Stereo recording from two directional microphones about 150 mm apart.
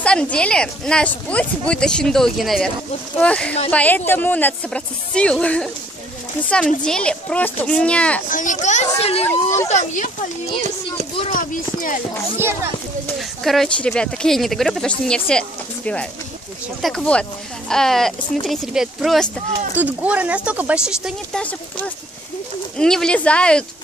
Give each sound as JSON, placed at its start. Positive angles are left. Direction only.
{"t": 0.0, "sound": "a woman's voice", "side_deg": 5}
{"t": 6.8, "sound": "a woman's voice", "side_deg": 5}
{"t": 8.3, "sound": "speech", "side_deg": 60}
{"t": 11.2, "sound": "speech", "side_deg": 65}
{"t": 13.4, "sound": "speech", "side_deg": 0}
{"t": 21.4, "sound": "a woman's voice", "side_deg": 10}